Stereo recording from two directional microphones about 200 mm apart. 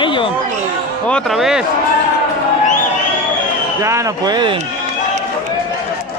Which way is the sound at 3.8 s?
15° right (ahead or behind).